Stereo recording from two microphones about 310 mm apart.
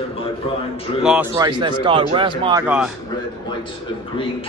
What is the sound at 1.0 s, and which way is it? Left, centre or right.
Speech, centre.